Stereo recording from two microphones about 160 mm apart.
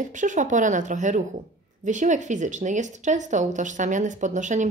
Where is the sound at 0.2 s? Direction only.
50° right (ahead or behind).